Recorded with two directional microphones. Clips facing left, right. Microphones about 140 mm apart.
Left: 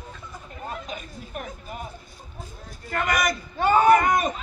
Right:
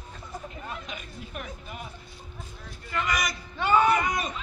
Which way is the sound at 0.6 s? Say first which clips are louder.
Left 4 dB; 40° left (ahead or behind).